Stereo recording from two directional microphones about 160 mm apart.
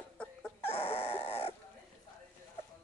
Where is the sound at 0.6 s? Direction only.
40° left (ahead or behind).